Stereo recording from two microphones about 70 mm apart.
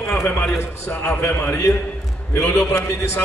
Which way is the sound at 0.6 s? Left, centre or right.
Left.